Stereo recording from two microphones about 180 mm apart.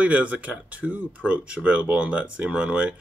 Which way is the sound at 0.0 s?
5° right (ahead or behind).